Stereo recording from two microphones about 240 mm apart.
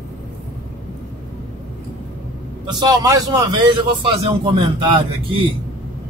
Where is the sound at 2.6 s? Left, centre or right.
Centre.